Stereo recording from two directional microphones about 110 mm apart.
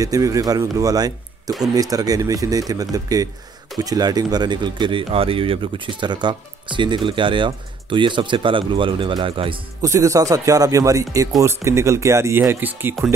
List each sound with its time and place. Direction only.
0.0 s speech: 30° right (ahead or behind); by 9.6 s 50° right (ahead or behind)
9.8 s speech: 30° right (ahead or behind)